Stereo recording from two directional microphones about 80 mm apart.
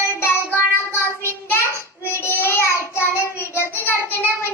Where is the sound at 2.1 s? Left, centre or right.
Left.